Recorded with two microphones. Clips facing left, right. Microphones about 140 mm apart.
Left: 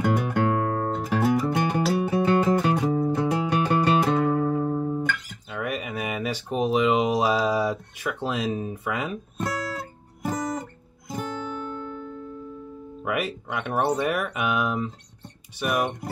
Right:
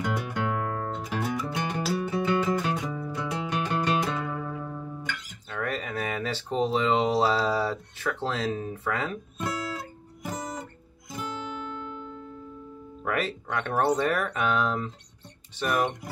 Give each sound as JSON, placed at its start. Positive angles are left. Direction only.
{"t": 0.0, "sound": "music", "side_deg": 50}
{"t": 5.5, "sound": "a sound", "side_deg": 10}
{"t": 9.4, "sound": "guitar", "side_deg": 55}
{"t": 13.0, "sound": "speech", "side_deg": 10}